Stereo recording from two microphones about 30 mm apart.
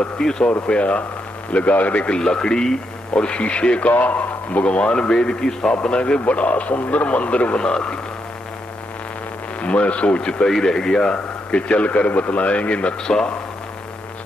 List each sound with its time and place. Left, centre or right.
0.2 s speech: left
0.7 s speech: left
1.5 s a man's voice: left
2.0 s speech: left
3.2 s speech: left
3.9 s a man's voice: left
4.6 s speech: left
4.9 s speech: left
5.7 s speech: left
6.2 s speech: left
7.6 s speech: left
9.6 s speech: left
10.6 s speech: left
11.7 s speech: left